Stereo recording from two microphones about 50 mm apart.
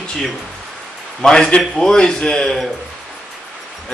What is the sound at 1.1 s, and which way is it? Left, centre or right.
A man's voice, centre.